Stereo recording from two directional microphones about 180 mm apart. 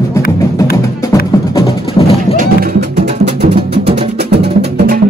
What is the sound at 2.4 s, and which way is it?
Music, 45° right (ahead or behind).